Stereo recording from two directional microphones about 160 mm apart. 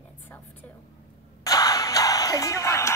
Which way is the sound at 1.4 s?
20° left (ahead or behind).